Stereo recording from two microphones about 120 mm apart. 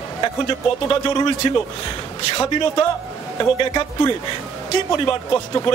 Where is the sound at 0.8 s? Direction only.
40° left (ahead or behind).